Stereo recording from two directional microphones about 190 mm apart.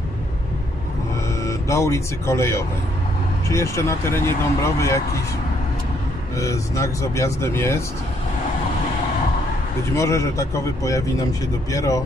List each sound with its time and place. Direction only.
1.4 s speech: 15° left (ahead or behind)
6.3 s speech: 15° left (ahead or behind)
9.9 s speech: 15° left (ahead or behind)